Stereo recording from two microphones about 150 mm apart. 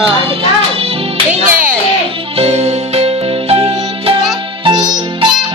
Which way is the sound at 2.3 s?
45° right (ahead or behind).